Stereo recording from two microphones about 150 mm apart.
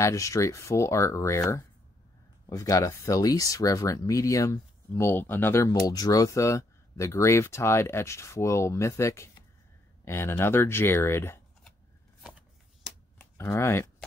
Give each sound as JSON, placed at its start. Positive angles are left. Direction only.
{"t": 0.0, "sound": "speech", "side_deg": 20}
{"t": 2.5, "sound": "speech", "side_deg": 20}
{"t": 12.2, "sound": "shuffling cards", "side_deg": -5}
{"t": 13.2, "sound": "speech", "side_deg": 20}